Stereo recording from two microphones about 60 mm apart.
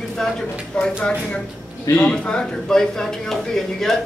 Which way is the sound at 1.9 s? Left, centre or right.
Centre.